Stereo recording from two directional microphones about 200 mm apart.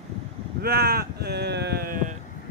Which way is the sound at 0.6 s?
50° right (ahead or behind).